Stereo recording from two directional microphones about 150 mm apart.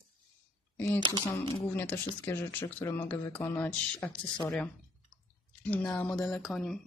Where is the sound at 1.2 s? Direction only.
20° left (ahead or behind).